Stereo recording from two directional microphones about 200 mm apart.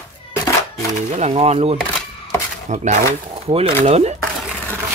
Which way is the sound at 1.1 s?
30° right (ahead or behind).